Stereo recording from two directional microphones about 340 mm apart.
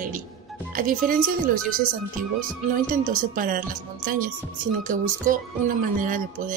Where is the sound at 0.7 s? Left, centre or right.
Right.